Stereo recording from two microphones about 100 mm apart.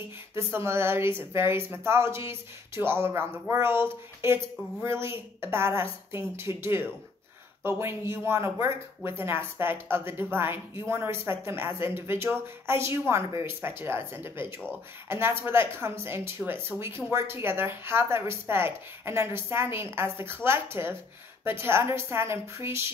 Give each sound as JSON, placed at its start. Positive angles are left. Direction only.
{"t": 0.3, "sound": "speech", "side_deg": -25}